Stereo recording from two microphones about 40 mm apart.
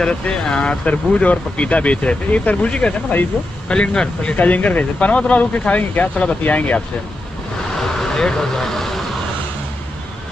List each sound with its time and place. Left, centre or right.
0.0 s speech: left
4.4 s speech: left
8.0 s vehicle: centre